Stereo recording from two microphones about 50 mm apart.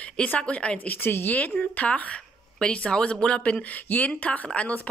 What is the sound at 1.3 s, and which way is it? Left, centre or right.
A woman's voice, left.